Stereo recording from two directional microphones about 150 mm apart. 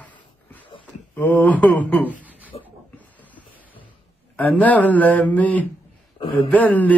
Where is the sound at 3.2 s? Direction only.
10° left (ahead or behind).